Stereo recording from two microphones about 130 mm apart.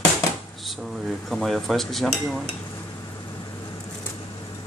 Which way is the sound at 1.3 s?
Centre (ahead or behind).